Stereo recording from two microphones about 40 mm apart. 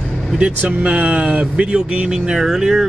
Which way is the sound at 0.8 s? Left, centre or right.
Right.